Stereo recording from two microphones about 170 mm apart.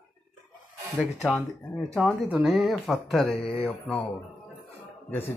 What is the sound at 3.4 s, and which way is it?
Mantra, 35° left (ahead or behind).